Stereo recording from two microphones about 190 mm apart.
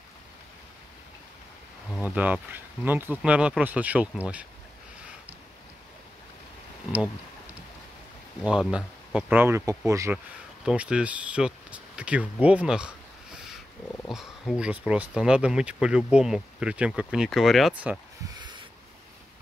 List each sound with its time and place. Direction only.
1.9 s speech: 5° right (ahead or behind)
8.5 s speech: 5° right (ahead or behind)
10.1 s speech: 5° right (ahead or behind)
18.4 s a sound: 25° right (ahead or behind)